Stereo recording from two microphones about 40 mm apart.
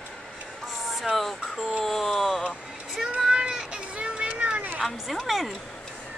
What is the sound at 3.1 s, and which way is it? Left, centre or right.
Run, centre.